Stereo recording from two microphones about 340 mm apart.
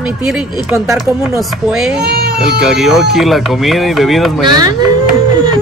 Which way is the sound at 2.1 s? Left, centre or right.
Right.